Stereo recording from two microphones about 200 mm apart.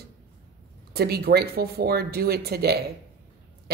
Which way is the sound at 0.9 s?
50° right (ahead or behind).